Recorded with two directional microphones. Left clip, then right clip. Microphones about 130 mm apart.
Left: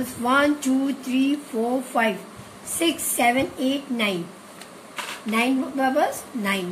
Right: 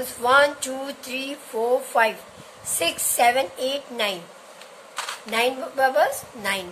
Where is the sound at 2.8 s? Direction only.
75° right (ahead or behind).